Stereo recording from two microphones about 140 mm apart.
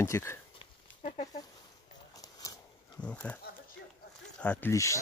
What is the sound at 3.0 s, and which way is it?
Speech, 10° left (ahead or behind).